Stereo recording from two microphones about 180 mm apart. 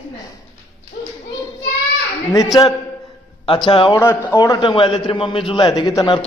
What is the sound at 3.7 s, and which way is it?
Speech, 30° left (ahead or behind).